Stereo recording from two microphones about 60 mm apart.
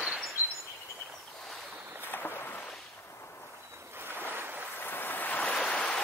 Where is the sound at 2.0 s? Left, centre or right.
Left.